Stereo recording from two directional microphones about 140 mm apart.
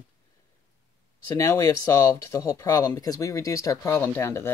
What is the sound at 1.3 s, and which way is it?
Speech, 20° left (ahead or behind).